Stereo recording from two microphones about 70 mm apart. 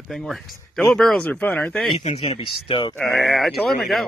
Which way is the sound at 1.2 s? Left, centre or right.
Centre.